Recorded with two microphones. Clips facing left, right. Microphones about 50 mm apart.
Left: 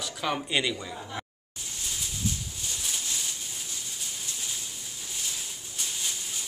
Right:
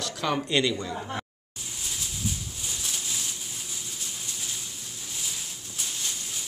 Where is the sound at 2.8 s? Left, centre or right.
Centre.